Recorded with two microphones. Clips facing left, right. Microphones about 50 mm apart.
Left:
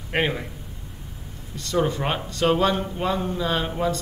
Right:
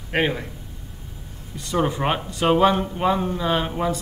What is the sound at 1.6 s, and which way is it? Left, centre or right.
A man's voice, centre.